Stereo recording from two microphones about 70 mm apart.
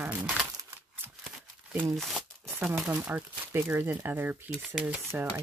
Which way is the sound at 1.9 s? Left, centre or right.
Centre.